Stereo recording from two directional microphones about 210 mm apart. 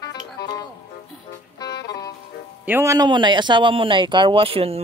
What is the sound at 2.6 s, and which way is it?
Speech, 10° right (ahead or behind).